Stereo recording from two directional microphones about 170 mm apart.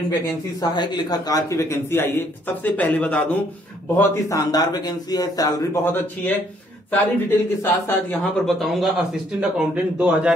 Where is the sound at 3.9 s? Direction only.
20° left (ahead or behind).